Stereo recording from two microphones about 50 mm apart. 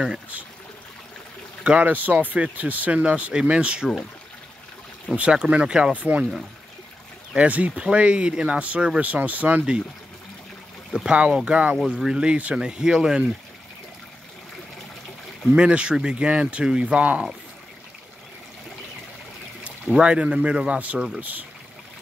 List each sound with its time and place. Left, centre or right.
1.6 s speech: right
1.9 s speech: right
5.1 s speech: right
5.9 s speech: right
7.3 s speech: right
11.1 s speech: right
11.8 s speech: centre
15.5 s speech: right
19.6 s speech: right